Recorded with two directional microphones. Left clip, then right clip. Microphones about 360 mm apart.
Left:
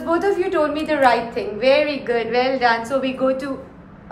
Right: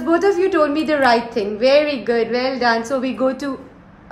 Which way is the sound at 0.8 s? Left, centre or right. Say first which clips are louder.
Right 1 dB; right.